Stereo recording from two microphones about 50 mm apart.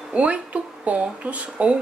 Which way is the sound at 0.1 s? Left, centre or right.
Right.